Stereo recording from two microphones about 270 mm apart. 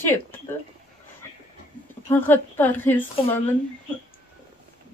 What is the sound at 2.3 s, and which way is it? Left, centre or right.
Speech, centre.